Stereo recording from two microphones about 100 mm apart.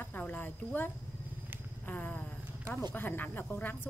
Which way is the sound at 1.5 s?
20° right (ahead or behind).